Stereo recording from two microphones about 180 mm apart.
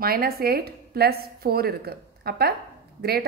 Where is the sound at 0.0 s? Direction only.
55° right (ahead or behind).